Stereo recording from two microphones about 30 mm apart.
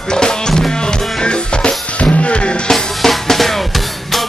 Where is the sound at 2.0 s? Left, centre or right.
Left.